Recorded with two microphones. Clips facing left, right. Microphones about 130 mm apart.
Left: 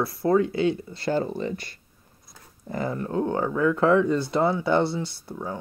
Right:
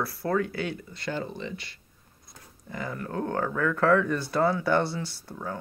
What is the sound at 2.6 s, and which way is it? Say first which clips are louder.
Speech: left 6 dB; 35° left (ahead or behind).